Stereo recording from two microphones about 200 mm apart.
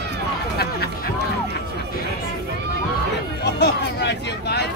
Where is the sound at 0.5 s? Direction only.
55° left (ahead or behind).